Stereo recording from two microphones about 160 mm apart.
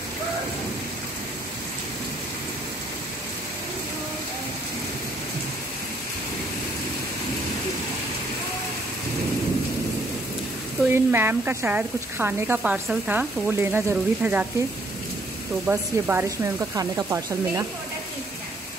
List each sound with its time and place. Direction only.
10.8 s speech: 15° right (ahead or behind)
15.6 s speech: 15° right (ahead or behind)